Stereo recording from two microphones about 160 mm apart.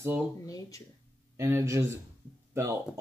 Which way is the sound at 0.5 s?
20° left (ahead or behind).